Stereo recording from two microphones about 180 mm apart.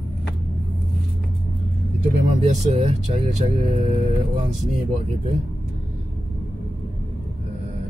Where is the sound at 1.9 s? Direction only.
40° right (ahead or behind).